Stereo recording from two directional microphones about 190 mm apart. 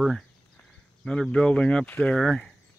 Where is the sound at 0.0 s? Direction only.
Centre (ahead or behind).